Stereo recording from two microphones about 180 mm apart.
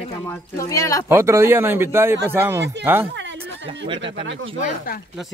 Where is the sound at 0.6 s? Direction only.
15° left (ahead or behind).